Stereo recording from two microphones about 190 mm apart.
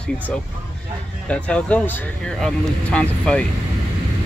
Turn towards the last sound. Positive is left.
turn(degrees=5)  # may be behind; listen again after turning